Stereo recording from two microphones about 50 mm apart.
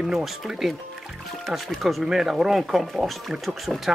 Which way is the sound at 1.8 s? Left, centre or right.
Centre.